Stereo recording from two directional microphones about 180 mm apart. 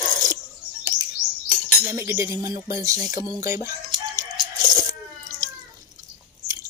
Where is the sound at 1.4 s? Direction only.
Centre (ahead or behind).